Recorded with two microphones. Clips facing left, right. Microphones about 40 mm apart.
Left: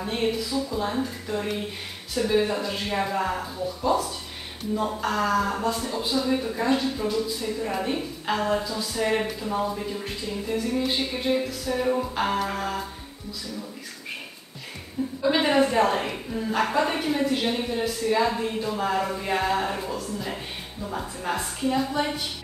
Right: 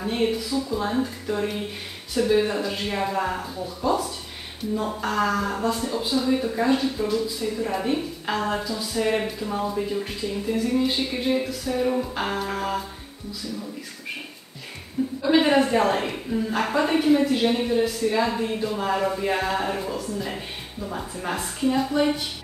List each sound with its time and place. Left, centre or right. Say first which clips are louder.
0.0 s a woman's voice: right 2 dB; centre
2.2 s music: right 3 dB; centre
2.5 s a woman's voice: even; centre
10.8 s music: right 2 dB; centre
11.7 s a woman's voice: even; centre
15.2 s a woman's voice: right 2 dB; centre